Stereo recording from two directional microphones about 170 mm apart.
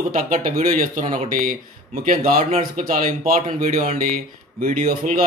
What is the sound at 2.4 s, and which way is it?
Speech, 40° right (ahead or behind).